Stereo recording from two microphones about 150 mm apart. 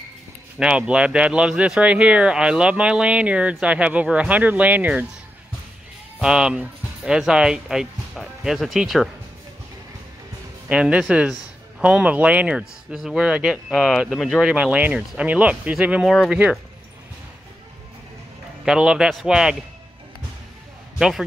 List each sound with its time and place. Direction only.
0.6 s speech: 5° right (ahead or behind)
6.2 s speech: 5° right (ahead or behind)
10.7 s speech: 5° right (ahead or behind)
18.7 s speech: 5° right (ahead or behind)